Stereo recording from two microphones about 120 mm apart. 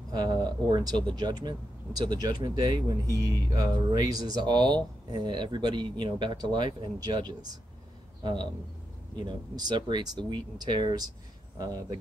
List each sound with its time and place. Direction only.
0.1 s a man's voice: 35° right (ahead or behind)
9.6 s speech: 35° right (ahead or behind)